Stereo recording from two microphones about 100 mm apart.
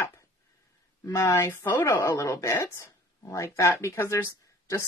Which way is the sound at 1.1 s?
30° left (ahead or behind).